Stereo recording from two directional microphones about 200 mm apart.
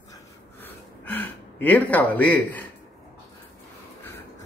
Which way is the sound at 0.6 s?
10° left (ahead or behind).